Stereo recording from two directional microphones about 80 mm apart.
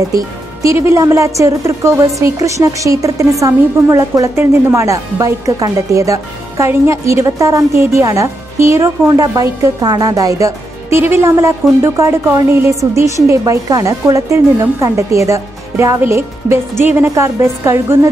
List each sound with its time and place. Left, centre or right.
0.1 s a woman's voice: right